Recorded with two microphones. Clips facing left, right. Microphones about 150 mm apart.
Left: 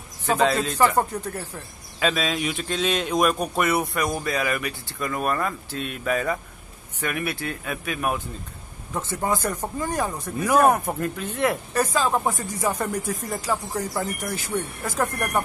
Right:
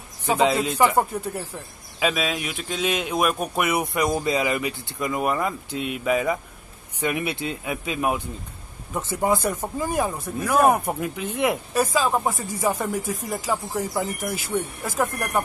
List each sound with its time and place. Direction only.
0.3 s a man's voice: 15° right (ahead or behind)